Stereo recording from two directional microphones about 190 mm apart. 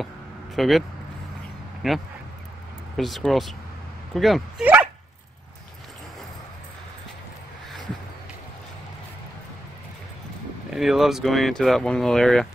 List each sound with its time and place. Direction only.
0.6 s speech: centre (ahead or behind)
10.7 s speech: centre (ahead or behind)